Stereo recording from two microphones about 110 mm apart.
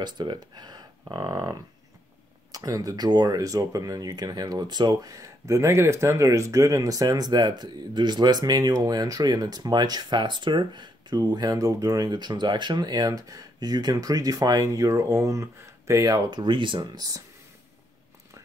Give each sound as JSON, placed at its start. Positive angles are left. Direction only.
{"t": 0.0, "sound": "speech", "side_deg": -40}
{"t": 16.3, "sound": "speech", "side_deg": -45}